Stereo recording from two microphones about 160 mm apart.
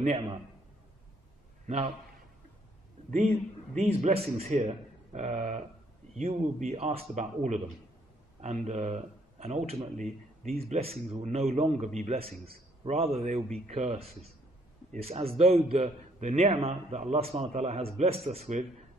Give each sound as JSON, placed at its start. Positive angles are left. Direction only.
{"t": 0.0, "sound": "a man's voice", "side_deg": -35}
{"t": 3.1, "sound": "a man's voice", "side_deg": -50}